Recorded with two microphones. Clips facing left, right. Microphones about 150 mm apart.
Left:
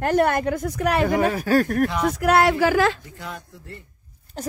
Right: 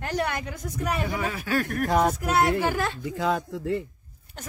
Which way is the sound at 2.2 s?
75° left (ahead or behind).